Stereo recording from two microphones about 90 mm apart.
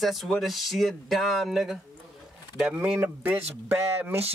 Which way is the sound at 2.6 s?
20° right (ahead or behind).